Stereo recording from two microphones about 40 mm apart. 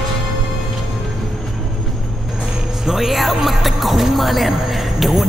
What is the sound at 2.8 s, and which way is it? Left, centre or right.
Speech, centre.